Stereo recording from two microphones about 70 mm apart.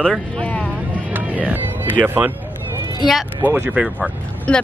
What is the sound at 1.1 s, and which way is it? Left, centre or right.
Speech, right.